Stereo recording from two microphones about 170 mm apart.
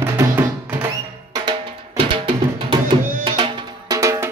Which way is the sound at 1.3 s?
30° right (ahead or behind).